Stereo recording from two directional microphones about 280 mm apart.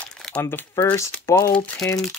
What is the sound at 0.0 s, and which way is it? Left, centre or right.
Speech, centre.